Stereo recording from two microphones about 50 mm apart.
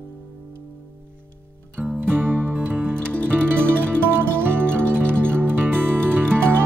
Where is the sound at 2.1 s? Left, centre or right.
Right.